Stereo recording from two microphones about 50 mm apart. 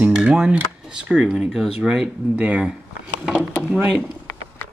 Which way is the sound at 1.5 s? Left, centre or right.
Centre.